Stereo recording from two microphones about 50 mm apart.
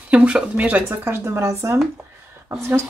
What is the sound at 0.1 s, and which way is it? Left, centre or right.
Speech, right.